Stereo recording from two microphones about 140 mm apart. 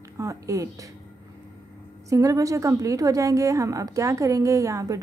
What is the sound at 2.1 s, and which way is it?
A woman's voice, 20° right (ahead or behind).